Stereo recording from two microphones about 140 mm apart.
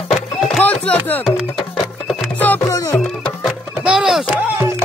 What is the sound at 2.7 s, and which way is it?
Music, 25° left (ahead or behind).